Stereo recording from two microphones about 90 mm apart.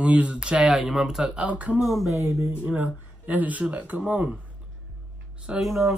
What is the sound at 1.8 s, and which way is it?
Speech, centre (ahead or behind).